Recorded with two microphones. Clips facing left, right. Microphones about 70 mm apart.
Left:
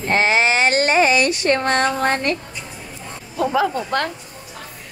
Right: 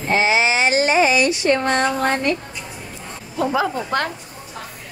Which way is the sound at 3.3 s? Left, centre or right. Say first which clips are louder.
Left 1 dB; centre.